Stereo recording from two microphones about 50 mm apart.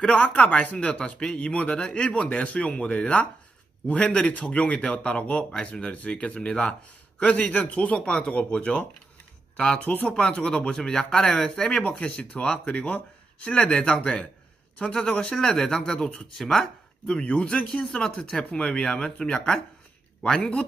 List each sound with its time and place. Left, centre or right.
0.0 s speech: left
7.2 s speech: left
8.0 s speech: centre
9.8 s speech: left; by 16.6 s centre
17.1 s speech: left